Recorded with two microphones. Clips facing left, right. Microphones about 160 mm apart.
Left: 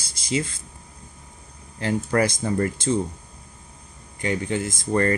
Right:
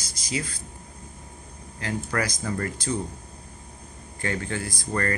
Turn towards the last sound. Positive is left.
turn(degrees=25)  # may be behind; listen again after turning